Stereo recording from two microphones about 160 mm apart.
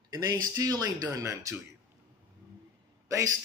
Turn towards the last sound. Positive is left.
turn(degrees=-20)  # may be behind; listen again after turning